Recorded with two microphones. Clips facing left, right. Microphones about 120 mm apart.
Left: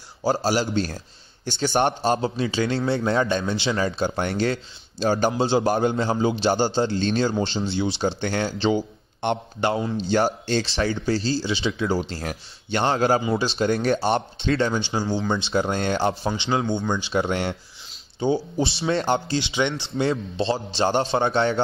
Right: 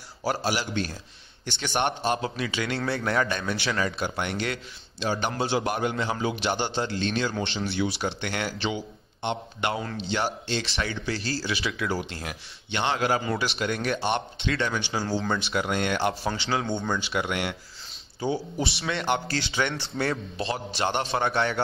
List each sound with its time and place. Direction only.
0.2 s a man's voice: 30° left (ahead or behind)
9.2 s a man's voice: 55° left (ahead or behind)
9.6 s a man's voice: 35° left (ahead or behind)
16.6 s speech: centre (ahead or behind)
16.9 s a man's voice: 25° left (ahead or behind)
19.2 s a man's voice: 20° left (ahead or behind)